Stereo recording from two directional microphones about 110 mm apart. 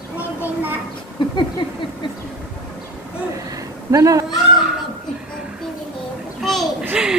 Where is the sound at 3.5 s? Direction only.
30° right (ahead or behind).